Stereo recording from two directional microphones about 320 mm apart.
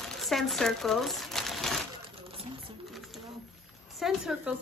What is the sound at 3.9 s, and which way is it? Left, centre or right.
Speech, centre.